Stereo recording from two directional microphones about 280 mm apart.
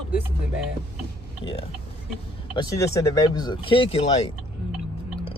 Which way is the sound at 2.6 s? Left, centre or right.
Centre.